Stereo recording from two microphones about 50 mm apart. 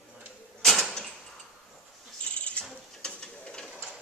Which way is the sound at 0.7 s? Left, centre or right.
Centre.